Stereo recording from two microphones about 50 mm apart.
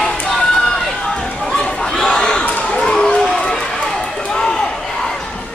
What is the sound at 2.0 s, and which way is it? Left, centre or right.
Crowd, centre.